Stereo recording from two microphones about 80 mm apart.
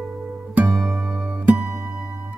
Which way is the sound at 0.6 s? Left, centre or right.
Centre.